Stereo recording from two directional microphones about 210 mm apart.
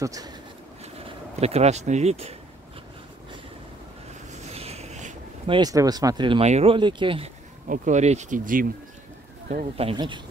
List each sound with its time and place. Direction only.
0.0 s speech: 15° right (ahead or behind)
0.9 s speech: 30° right (ahead or behind)
4.4 s a sound: 30° right (ahead or behind)
5.6 s speech: 15° right (ahead or behind)
7.6 s speech: 40° right (ahead or behind)
9.8 s speech: 25° right (ahead or behind)